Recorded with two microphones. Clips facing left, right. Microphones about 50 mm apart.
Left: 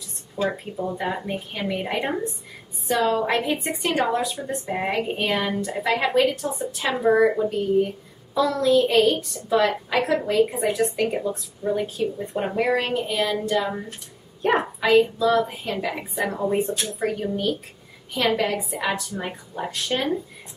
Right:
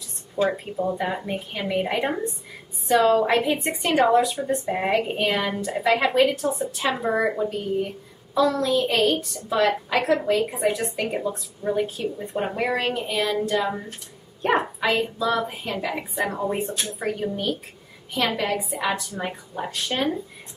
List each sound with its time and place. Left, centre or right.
0.4 s a woman's voice: centre